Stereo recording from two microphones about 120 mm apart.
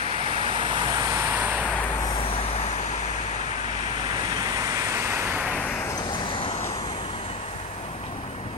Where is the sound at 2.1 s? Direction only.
50° left (ahead or behind); by 2.9 s 75° left (ahead or behind).